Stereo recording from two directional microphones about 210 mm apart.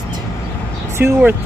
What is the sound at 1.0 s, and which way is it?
Speech, 10° right (ahead or behind).